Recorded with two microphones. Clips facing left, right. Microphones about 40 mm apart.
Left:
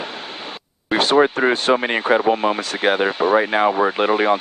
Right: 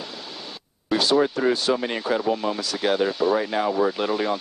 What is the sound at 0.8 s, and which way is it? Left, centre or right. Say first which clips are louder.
Speech: left 5 dB; left.